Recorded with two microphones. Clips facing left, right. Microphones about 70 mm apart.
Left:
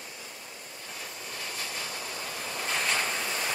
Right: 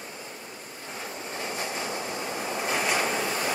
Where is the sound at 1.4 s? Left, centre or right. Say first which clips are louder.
Right 6 dB; right.